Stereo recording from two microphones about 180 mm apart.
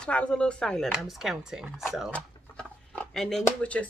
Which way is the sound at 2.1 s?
10° left (ahead or behind).